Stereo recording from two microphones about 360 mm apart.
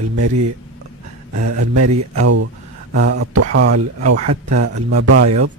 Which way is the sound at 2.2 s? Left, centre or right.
Right.